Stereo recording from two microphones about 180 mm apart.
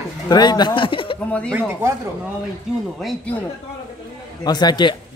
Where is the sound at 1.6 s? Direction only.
15° right (ahead or behind).